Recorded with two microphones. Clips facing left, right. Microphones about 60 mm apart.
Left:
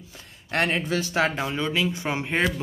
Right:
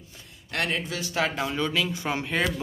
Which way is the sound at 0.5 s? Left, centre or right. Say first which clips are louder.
Left 5 dB; left.